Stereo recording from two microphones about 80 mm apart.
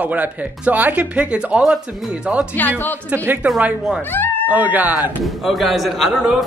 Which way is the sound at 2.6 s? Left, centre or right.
Left.